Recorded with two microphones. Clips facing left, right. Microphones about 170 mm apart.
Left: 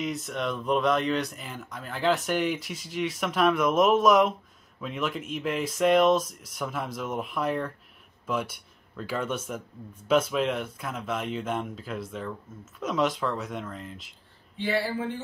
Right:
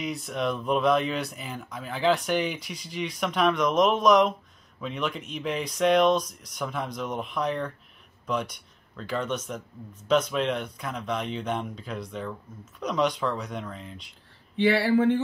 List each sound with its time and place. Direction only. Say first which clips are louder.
0.0 s speech: right 1 dB; centre (ahead or behind)
14.6 s speech: right 7 dB; 70° right (ahead or behind)